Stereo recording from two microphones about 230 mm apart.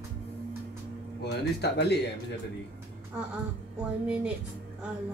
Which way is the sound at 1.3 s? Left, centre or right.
Left.